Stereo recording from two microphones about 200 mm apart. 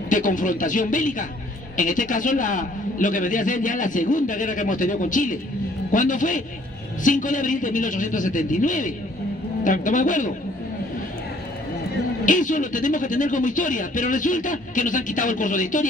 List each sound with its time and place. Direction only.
0.1 s a man's voice: 40° left (ahead or behind)
12.3 s a man's voice: 40° left (ahead or behind)